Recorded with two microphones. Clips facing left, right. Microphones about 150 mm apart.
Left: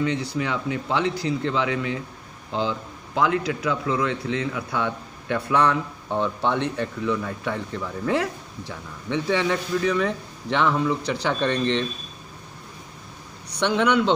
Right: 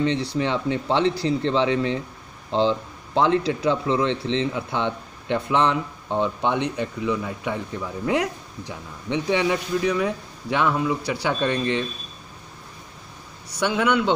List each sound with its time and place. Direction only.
0.0 s speech: 30° right (ahead or behind); by 11.8 s 10° right (ahead or behind)
13.5 s a man's voice: 5° right (ahead or behind)